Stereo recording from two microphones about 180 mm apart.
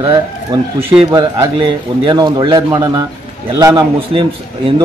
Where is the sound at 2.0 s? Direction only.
25° right (ahead or behind).